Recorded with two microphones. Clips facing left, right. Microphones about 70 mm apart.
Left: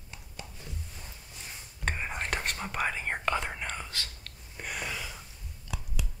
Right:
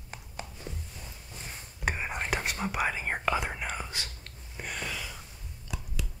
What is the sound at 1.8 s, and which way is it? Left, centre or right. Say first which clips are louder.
Whispering: right 1 dB; centre.